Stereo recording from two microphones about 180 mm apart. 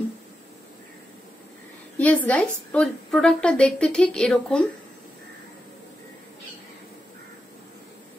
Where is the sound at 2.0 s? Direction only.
10° left (ahead or behind).